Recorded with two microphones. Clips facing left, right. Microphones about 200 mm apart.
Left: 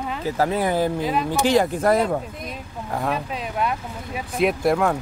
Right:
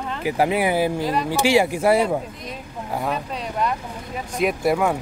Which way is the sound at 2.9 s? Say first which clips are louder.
Left 1 dB; 5° left (ahead or behind).